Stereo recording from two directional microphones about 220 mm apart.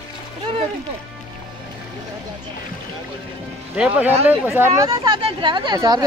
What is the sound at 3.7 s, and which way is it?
Speech, 5° right (ahead or behind).